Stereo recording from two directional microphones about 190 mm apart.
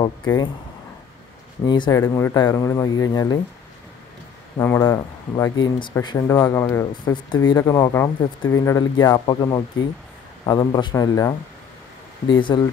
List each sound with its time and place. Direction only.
1.7 s speech: 20° left (ahead or behind)
4.6 s speech: 15° left (ahead or behind)